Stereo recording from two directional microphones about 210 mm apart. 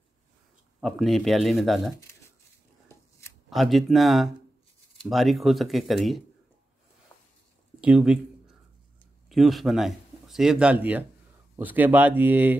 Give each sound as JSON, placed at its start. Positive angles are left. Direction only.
{"t": 0.7, "sound": "speech", "side_deg": 0}
{"t": 3.4, "sound": "speech", "side_deg": 0}
{"t": 7.8, "sound": "speech", "side_deg": -5}
{"t": 9.3, "sound": "speech", "side_deg": 0}